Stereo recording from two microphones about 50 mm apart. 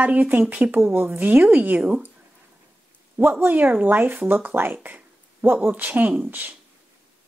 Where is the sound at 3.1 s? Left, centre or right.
Right.